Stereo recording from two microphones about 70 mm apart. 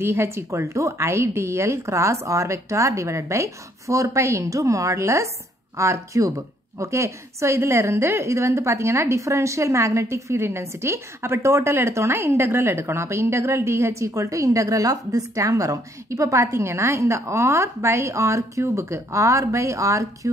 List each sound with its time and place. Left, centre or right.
0.0 s a woman's voice: right